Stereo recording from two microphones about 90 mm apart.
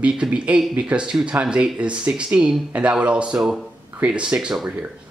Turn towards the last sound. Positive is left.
turn(degrees=-10)  # may be behind; listen again after turning